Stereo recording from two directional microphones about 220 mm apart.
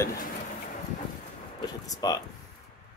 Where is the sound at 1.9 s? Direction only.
15° left (ahead or behind).